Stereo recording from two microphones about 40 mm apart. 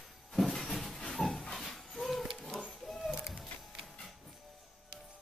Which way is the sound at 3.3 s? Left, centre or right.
Centre.